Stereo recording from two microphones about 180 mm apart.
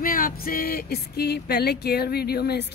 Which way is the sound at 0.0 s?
50° left (ahead or behind).